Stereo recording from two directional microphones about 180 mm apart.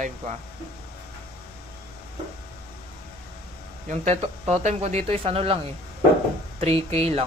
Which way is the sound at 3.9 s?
40° right (ahead or behind).